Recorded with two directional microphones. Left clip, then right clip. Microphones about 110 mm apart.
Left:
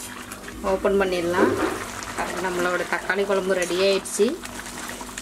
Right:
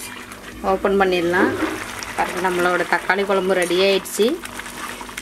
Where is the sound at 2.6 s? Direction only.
35° right (ahead or behind).